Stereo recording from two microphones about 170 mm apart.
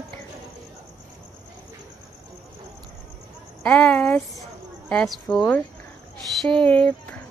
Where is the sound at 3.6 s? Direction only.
10° left (ahead or behind).